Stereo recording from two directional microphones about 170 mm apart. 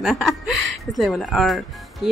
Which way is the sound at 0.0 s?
Centre (ahead or behind).